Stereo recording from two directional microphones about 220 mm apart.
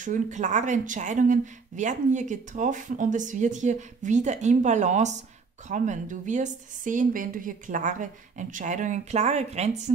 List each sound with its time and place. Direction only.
0.0 s speech: 35° right (ahead or behind)